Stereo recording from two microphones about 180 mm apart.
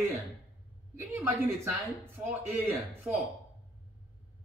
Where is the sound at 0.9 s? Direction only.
15° right (ahead or behind).